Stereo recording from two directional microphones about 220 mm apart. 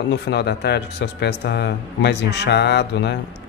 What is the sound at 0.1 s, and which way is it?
Speech, 50° left (ahead or behind).